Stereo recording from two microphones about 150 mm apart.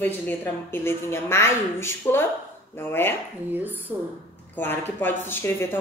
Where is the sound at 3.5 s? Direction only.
10° right (ahead or behind).